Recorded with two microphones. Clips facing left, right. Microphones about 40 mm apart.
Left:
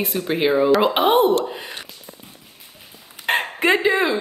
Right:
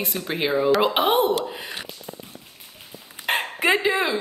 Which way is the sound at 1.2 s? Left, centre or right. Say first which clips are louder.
Left 4 dB; left.